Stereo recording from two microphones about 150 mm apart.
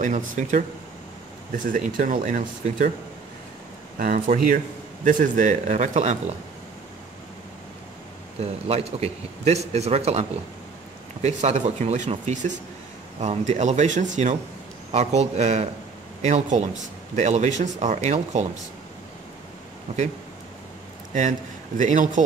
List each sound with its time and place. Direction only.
0.0 s speech: 55° right (ahead or behind)
4.0 s speech: 70° right (ahead or behind)
5.0 s speech: 55° right (ahead or behind)
8.4 s speech: 45° right (ahead or behind)
11.2 s speech: 50° right (ahead or behind)
21.1 s a man's voice: 55° right (ahead or behind)